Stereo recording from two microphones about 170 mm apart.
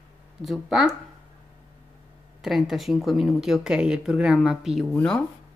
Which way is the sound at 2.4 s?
Centre (ahead or behind).